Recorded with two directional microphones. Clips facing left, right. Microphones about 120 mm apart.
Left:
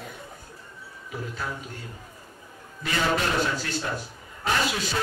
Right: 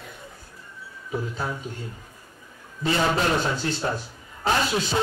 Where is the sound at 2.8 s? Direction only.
30° right (ahead or behind).